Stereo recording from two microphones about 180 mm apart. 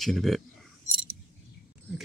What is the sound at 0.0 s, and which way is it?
Speech, centre (ahead or behind).